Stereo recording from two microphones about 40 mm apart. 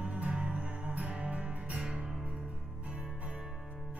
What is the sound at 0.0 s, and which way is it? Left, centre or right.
Music, right.